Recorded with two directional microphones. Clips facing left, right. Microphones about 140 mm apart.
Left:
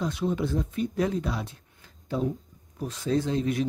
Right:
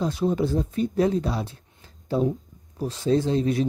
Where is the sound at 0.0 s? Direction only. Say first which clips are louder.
Right 4 dB; 35° right (ahead or behind).